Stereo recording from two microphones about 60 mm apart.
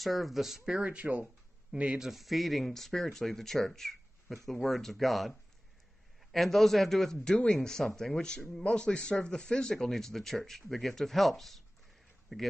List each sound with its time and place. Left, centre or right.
0.0 s speech: centre
0.9 s speech: right
1.7 s speech: centre
6.3 s speech: centre